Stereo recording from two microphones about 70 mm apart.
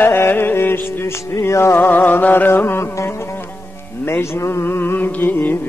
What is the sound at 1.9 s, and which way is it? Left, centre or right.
Music, left.